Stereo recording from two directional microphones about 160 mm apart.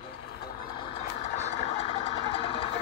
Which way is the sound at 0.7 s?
35° left (ahead or behind).